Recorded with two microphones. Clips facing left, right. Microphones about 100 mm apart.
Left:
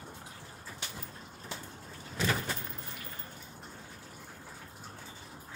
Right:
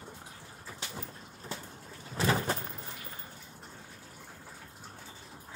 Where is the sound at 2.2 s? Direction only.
35° right (ahead or behind).